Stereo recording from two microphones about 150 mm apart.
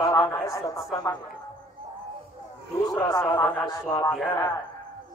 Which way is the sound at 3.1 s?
25° left (ahead or behind).